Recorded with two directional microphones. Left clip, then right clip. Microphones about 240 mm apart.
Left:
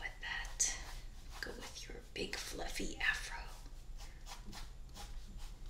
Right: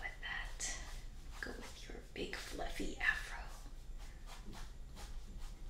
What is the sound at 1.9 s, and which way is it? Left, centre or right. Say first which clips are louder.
Whispering: left 2 dB; centre.